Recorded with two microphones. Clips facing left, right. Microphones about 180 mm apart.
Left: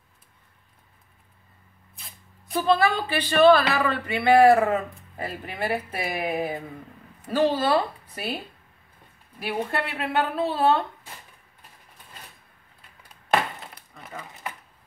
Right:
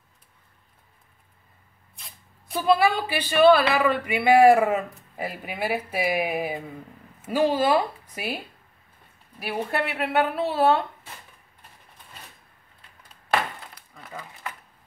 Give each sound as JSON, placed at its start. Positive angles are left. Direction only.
{"t": 2.0, "sound": "speech", "side_deg": 0}
{"t": 9.4, "sound": "speech", "side_deg": -5}
{"t": 13.7, "sound": "a sound", "side_deg": 20}